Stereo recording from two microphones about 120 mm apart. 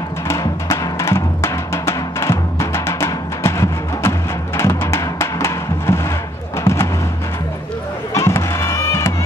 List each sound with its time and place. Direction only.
0.3 s music: 25° left (ahead or behind)
8.1 s music: 25° left (ahead or behind)